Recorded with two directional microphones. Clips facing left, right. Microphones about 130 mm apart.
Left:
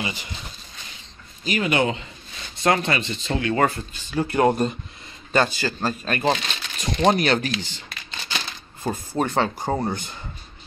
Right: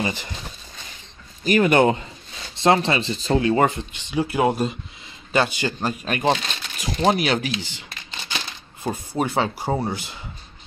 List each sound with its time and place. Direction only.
0.0 s speech: 50° right (ahead or behind)
1.4 s speech: 50° right (ahead or behind)
2.5 s speech: 30° right (ahead or behind)
3.5 s speech: 20° right (ahead or behind)
4.2 s speech: 5° right (ahead or behind)
8.8 s speech: 10° right (ahead or behind)